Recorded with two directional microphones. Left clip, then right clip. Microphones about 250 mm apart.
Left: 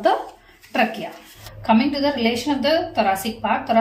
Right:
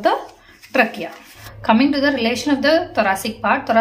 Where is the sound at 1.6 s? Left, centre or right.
Centre.